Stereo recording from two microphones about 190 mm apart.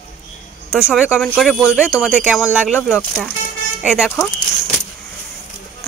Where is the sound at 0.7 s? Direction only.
5° right (ahead or behind).